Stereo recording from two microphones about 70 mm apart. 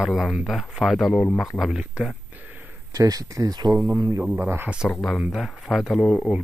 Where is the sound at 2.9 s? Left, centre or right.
Right.